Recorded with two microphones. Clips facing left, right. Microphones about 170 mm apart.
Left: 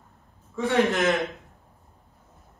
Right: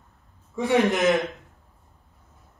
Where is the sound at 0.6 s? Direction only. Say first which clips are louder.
Right 2 dB; 15° right (ahead or behind).